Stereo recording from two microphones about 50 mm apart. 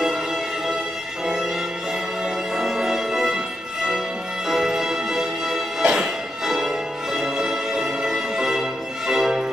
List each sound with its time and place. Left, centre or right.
1.2 s music: centre
4.5 s music: centre